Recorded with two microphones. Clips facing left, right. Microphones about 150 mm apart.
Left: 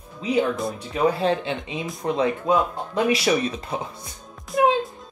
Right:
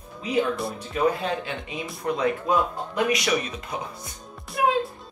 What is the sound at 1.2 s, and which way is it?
Speech, 25° left (ahead or behind).